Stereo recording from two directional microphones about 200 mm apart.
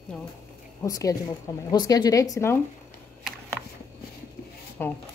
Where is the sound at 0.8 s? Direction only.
15° left (ahead or behind).